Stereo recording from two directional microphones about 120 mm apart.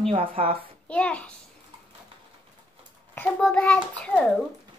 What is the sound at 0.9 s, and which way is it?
Speech, 10° left (ahead or behind).